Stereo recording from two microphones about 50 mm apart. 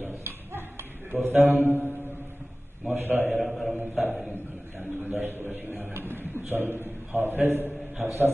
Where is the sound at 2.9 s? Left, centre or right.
Right.